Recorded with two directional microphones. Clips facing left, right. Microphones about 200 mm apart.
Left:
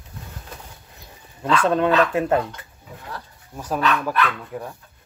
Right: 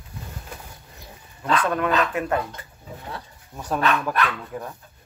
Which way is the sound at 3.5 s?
5° left (ahead or behind).